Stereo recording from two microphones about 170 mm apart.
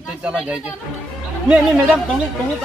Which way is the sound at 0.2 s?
5° right (ahead or behind).